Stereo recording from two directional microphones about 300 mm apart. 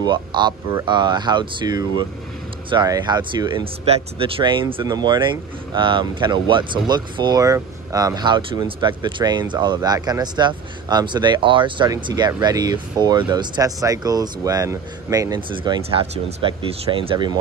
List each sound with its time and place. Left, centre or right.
0.0 s speech: centre